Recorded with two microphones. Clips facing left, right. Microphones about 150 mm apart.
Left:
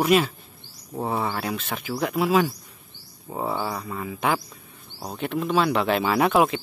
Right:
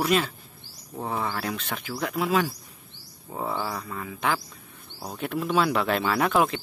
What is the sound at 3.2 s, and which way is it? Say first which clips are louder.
Speech: left 3 dB; 15° left (ahead or behind).